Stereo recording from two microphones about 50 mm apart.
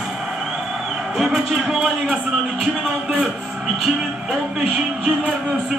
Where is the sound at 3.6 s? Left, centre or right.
Centre.